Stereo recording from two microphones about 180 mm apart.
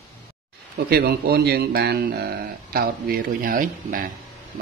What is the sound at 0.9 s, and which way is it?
A man's voice, 60° right (ahead or behind).